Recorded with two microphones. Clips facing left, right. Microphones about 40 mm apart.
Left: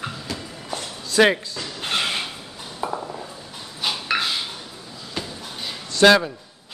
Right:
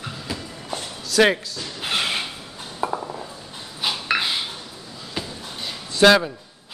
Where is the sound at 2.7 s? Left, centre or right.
Centre.